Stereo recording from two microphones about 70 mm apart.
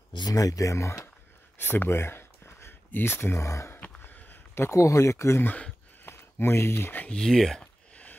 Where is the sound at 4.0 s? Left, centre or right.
Left.